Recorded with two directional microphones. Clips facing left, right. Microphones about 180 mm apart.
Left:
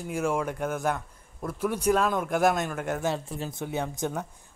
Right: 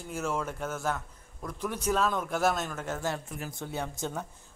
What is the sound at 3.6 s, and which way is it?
Speech, 15° left (ahead or behind).